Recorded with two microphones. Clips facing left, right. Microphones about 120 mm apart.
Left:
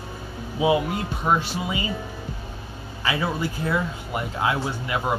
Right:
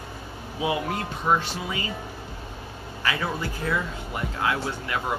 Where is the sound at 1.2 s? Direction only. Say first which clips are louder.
Left 1 dB; 15° left (ahead or behind).